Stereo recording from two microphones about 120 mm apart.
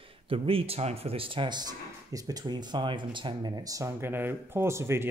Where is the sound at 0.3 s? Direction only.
50° right (ahead or behind).